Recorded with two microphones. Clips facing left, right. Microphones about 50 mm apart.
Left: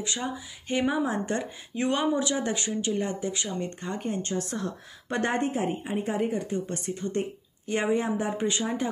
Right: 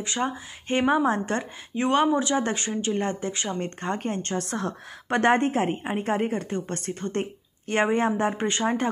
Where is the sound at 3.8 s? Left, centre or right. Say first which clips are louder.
Right 3 dB; right.